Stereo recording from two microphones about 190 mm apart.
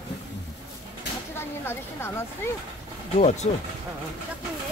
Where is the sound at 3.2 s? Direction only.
35° left (ahead or behind).